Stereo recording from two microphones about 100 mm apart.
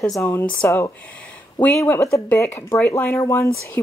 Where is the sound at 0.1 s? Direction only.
25° left (ahead or behind).